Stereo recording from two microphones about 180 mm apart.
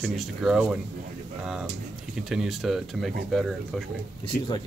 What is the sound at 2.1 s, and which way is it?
Speech, 5° right (ahead or behind).